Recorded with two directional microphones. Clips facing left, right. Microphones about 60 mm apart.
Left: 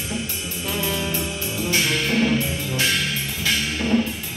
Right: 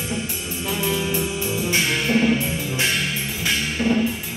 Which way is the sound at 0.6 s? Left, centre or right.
Centre.